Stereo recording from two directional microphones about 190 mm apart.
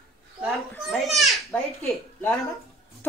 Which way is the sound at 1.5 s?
15° left (ahead or behind).